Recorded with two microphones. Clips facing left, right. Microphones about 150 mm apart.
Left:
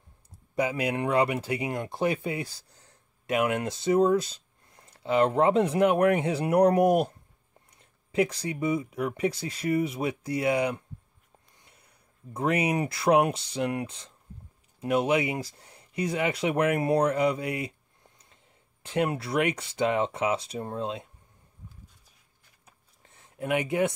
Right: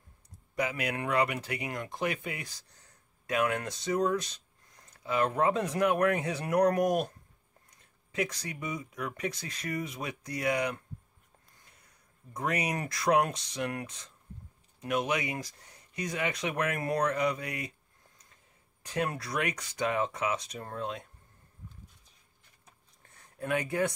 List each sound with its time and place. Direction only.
0.6 s speech: 30° left (ahead or behind)
7.8 s speech: 30° left (ahead or behind)
12.4 s speech: 25° left (ahead or behind)
23.0 s a sound: 25° left (ahead or behind)